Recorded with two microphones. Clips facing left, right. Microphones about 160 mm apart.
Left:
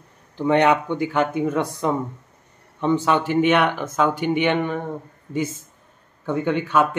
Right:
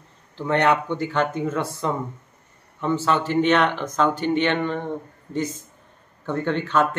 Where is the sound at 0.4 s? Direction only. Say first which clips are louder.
Left 3 dB; 15° left (ahead or behind).